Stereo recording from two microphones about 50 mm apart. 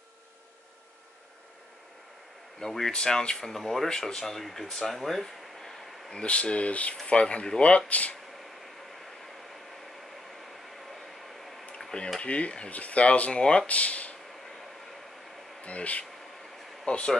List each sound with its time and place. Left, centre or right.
2.6 s speech: centre
6.2 s speech: left
11.8 s a sound: centre
12.2 s speech: left
13.7 s speech: left
15.6 s speech: left